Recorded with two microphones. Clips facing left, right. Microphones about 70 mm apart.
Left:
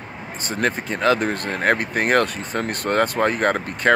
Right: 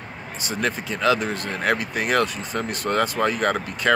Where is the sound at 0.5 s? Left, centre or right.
Left.